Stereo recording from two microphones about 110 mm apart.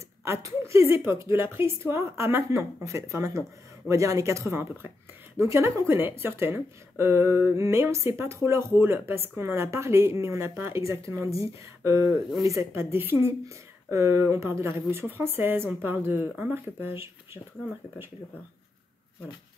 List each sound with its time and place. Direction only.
0.2 s a woman's voice: 25° right (ahead or behind)